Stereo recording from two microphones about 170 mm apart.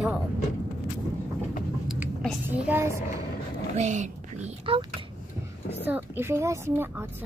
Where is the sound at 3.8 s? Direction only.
45° right (ahead or behind).